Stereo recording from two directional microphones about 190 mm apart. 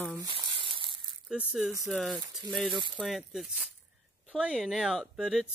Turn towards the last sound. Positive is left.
turn(degrees=0)  # may be behind; listen again after turning